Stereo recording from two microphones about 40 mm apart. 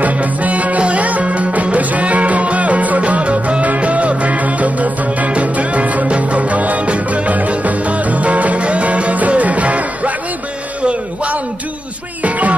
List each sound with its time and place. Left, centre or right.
0.0 s music: right
10.8 s a sound: right
12.2 s music: right